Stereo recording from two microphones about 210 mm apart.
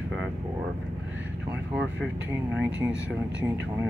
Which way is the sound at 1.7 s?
5° right (ahead or behind).